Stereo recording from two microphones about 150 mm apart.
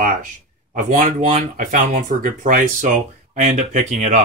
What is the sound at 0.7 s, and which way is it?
Speech, 60° right (ahead or behind).